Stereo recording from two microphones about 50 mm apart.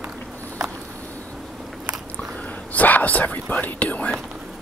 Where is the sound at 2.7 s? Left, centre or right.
Left.